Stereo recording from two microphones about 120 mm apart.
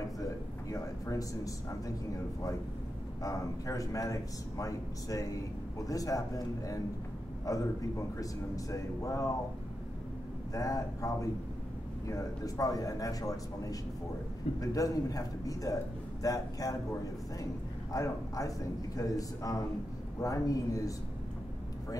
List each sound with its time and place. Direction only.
0.7 s a man's voice: 25° left (ahead or behind)
3.2 s a man's voice: 30° left (ahead or behind)
10.5 s a man's voice: 30° left (ahead or behind)
14.6 s a man's voice: 30° left (ahead or behind)